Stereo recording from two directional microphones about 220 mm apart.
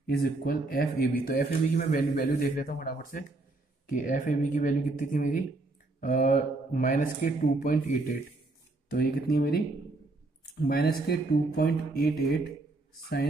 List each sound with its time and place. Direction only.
0.0 s a man's voice: 45° left (ahead or behind)